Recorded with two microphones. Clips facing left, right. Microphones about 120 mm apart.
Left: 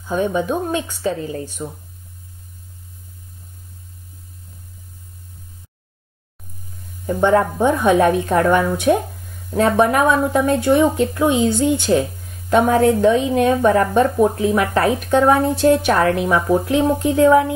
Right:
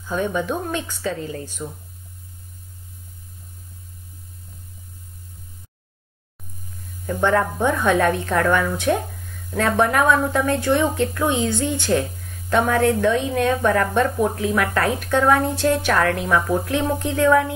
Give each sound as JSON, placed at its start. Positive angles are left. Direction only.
{"t": 0.0, "sound": "speech", "side_deg": 20}
{"t": 7.1, "sound": "speech", "side_deg": 20}